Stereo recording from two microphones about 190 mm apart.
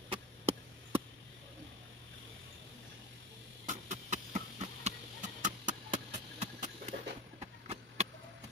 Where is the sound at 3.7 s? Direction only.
40° right (ahead or behind).